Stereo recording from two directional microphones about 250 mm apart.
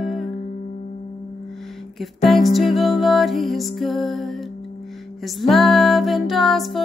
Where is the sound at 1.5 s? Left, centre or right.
Centre.